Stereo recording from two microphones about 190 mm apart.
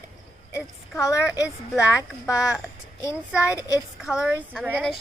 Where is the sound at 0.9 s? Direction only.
15° left (ahead or behind).